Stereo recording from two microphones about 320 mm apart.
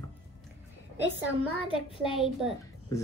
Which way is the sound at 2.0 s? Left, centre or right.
Centre.